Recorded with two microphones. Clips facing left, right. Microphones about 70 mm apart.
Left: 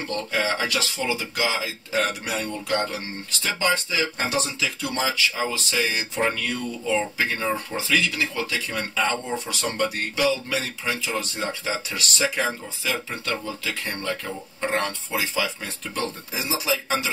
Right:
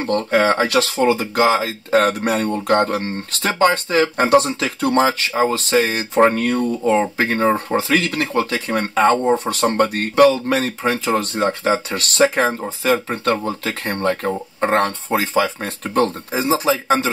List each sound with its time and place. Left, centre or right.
0.0 s speech: right